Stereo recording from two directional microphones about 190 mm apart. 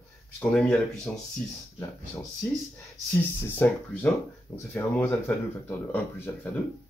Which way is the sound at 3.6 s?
10° left (ahead or behind).